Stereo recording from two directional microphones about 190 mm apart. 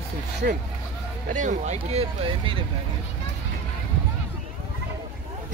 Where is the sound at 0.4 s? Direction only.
50° right (ahead or behind).